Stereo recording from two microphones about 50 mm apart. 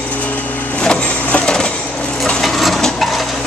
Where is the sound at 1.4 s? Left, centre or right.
Centre.